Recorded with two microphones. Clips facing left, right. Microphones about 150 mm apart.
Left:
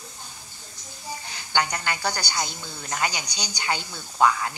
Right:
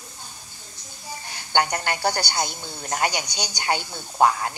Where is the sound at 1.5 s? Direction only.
55° right (ahead or behind).